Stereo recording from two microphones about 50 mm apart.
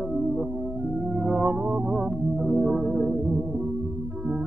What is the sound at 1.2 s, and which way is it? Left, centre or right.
Music, centre.